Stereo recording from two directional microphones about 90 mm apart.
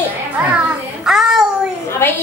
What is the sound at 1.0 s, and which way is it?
Speech, 5° right (ahead or behind).